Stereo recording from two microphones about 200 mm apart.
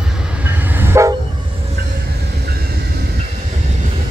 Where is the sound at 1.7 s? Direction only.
55° right (ahead or behind).